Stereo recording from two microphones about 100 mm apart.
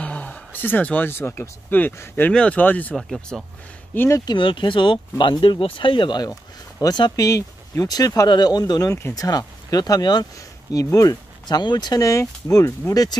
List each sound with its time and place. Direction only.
0.0 s speech: 15° left (ahead or behind)
3.0 s speech: centre (ahead or behind)
3.9 s speech: 20° left (ahead or behind)
4.3 s speech: 55° left (ahead or behind); by 11.1 s 35° left (ahead or behind)
11.4 s speech: 45° left (ahead or behind)